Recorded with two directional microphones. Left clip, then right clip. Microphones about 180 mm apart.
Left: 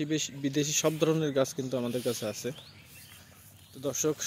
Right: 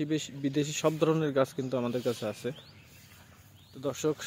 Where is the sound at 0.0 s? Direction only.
Centre (ahead or behind).